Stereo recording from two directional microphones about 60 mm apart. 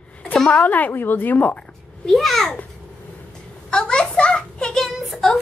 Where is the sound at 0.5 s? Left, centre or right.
Left.